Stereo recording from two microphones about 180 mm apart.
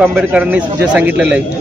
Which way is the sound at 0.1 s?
10° right (ahead or behind).